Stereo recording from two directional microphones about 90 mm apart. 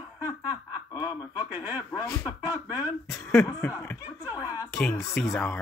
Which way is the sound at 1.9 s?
45° left (ahead or behind).